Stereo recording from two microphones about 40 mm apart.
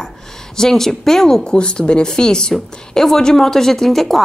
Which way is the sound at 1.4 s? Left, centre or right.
Left.